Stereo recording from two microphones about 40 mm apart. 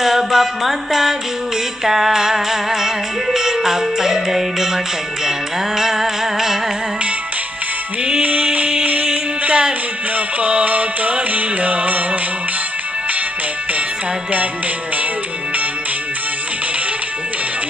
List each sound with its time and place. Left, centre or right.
0.0 s music: centre
5.8 s music: centre
8.2 s music: right